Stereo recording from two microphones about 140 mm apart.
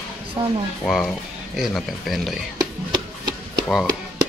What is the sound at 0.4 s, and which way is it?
Speech, 35° right (ahead or behind).